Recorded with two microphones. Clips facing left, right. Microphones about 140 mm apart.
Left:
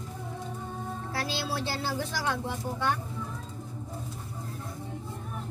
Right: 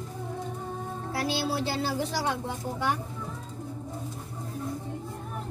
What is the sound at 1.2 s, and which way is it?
Speech, 20° right (ahead or behind).